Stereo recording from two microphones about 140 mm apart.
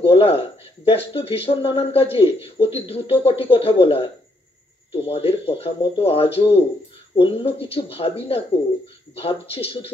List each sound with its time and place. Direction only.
0.0 s speech: 40° left (ahead or behind)